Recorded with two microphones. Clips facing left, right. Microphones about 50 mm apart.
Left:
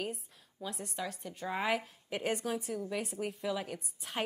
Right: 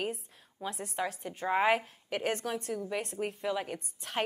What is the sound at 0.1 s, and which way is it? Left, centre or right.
A woman's voice, centre.